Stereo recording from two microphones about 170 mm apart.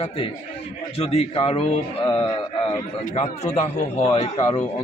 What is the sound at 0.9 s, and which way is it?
A man's voice, 35° left (ahead or behind).